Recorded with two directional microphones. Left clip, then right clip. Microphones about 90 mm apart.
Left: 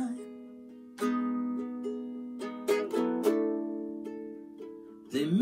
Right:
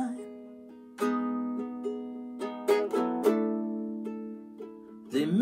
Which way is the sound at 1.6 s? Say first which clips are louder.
Right 2 dB; 25° right (ahead or behind).